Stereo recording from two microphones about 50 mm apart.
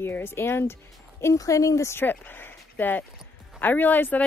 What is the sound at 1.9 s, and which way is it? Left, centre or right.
Speech, left.